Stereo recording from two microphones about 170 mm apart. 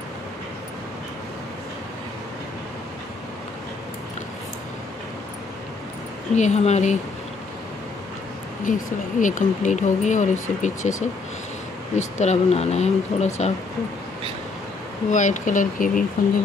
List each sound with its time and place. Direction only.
6.3 s speech: 40° left (ahead or behind)
8.7 s speech: 50° left (ahead or behind)
15.0 s speech: 50° left (ahead or behind)